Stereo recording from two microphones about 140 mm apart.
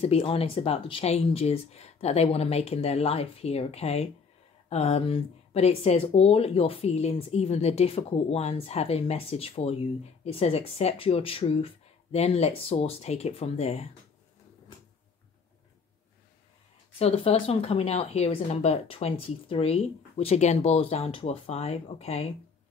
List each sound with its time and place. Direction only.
0.0 s speech: 45° left (ahead or behind)
17.0 s speech: 45° left (ahead or behind)